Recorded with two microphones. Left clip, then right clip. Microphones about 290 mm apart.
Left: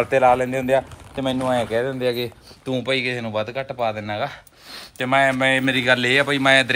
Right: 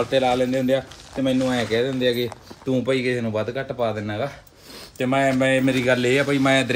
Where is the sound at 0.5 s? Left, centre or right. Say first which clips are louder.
Left 2 dB; left.